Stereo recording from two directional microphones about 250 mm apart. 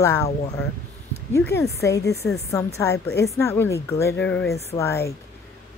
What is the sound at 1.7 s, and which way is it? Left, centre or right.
A woman's voice, centre.